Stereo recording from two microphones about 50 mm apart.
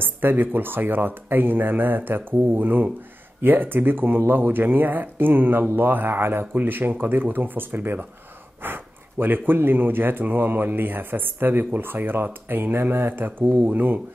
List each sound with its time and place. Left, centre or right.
0.0 s speech: right